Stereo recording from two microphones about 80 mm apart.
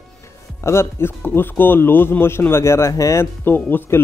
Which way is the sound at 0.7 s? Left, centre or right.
Left.